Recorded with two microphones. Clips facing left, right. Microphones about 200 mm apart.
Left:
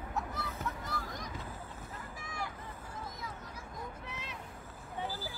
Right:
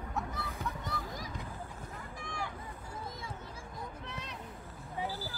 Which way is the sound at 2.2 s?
5° left (ahead or behind).